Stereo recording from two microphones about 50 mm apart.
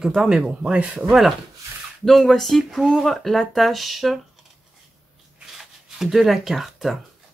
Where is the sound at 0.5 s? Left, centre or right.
Right.